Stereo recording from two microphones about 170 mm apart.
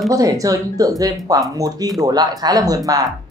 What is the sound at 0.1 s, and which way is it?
Speech, 20° right (ahead or behind).